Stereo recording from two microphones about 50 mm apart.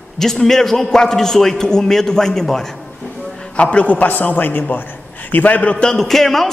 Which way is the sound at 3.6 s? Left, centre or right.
Left.